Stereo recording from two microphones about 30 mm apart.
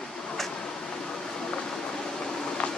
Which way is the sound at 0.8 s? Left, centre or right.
Left.